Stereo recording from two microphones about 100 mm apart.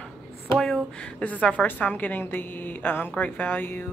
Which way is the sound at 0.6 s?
5° left (ahead or behind).